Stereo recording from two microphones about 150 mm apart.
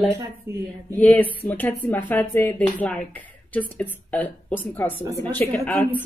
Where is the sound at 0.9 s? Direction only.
10° left (ahead or behind).